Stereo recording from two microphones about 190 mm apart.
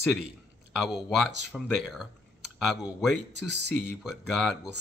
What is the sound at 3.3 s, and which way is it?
Speech, 65° right (ahead or behind).